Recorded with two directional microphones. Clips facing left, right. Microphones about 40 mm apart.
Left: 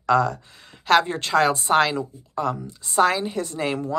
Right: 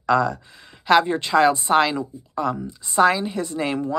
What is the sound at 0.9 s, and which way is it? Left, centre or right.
Speech, centre.